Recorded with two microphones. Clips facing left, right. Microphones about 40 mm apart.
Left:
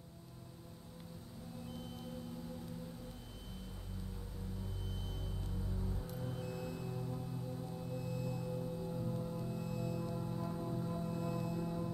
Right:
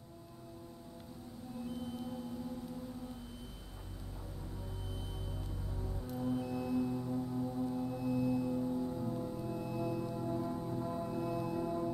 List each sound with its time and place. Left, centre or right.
5.4 s music: centre